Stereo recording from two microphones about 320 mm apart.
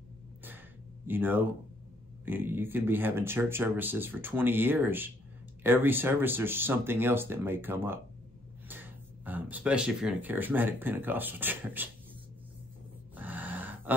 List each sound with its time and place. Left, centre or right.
1.0 s speech: centre
13.1 s gasp: centre